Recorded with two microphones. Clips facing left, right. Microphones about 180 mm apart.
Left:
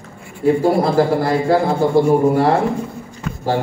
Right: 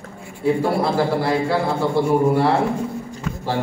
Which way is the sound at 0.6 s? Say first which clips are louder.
Left 6 dB; 45° left (ahead or behind).